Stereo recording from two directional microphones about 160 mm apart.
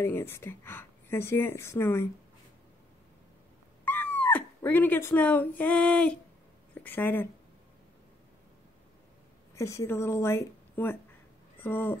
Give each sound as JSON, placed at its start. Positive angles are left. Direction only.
{"t": 0.0, "sound": "speech", "side_deg": 15}
{"t": 3.8, "sound": "cat", "side_deg": 10}
{"t": 5.6, "sound": "speech", "side_deg": 10}
{"t": 9.6, "sound": "a woman's voice", "side_deg": 20}